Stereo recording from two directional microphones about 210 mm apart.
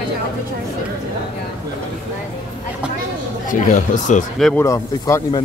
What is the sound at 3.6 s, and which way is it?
Speech, 35° left (ahead or behind).